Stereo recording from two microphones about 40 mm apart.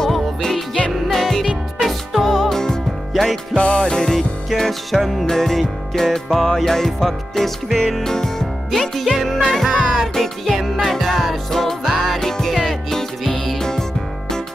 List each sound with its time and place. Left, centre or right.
0.0 s music: centre
3.5 s music: left
3.8 s music: centre
9.5 s music: centre